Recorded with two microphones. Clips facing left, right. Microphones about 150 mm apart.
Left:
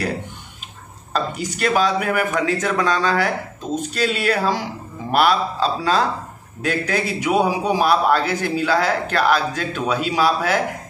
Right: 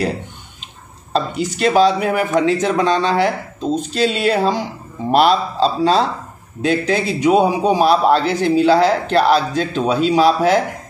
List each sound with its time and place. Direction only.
1.1 s a man's voice: 30° right (ahead or behind)